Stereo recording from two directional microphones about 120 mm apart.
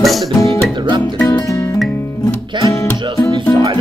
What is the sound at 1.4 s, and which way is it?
Music, 25° left (ahead or behind).